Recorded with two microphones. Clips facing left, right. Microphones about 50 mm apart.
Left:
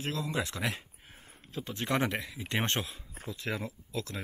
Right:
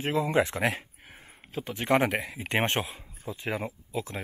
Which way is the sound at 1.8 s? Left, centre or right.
Right.